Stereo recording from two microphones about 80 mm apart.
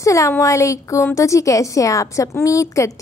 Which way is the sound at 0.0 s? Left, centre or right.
Left.